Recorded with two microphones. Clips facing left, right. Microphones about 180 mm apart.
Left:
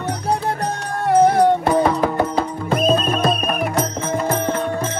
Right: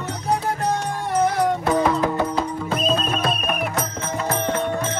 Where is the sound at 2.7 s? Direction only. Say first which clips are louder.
Left 6 dB; 55° left (ahead or behind).